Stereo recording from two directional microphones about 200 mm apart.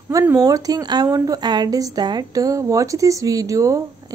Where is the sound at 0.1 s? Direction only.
15° right (ahead or behind).